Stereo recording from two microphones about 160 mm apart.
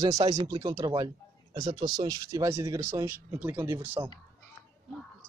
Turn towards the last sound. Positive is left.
turn(degrees=-20)  # may be behind; listen again after turning